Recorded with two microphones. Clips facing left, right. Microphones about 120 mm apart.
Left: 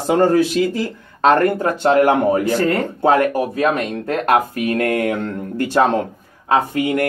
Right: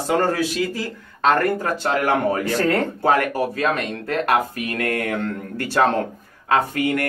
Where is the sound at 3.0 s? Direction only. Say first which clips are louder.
Left 6 dB; 20° left (ahead or behind).